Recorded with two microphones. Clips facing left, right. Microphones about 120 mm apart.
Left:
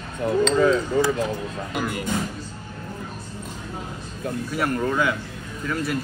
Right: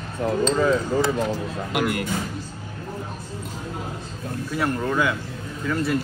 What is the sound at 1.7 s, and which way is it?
Speech, 65° right (ahead or behind).